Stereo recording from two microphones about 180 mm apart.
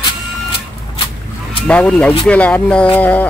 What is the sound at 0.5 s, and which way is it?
Vehicle, 30° left (ahead or behind).